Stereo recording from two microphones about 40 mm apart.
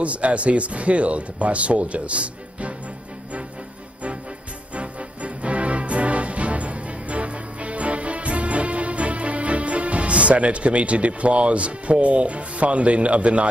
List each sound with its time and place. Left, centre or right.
0.0 s speech: right
4.7 s music: right